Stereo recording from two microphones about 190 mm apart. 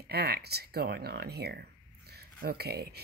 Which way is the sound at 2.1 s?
55° right (ahead or behind).